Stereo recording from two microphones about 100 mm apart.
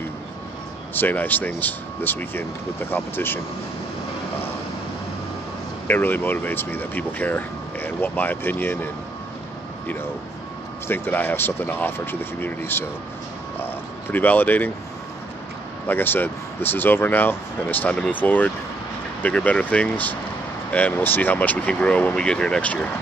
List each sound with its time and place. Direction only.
0.9 s speech: 20° left (ahead or behind)
5.9 s speech: 20° left (ahead or behind)
10.9 s speech: 20° left (ahead or behind)
14.1 s speech: 20° left (ahead or behind)
15.9 s speech: 20° left (ahead or behind)